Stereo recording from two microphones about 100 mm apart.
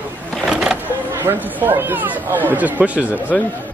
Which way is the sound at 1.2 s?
25° right (ahead or behind).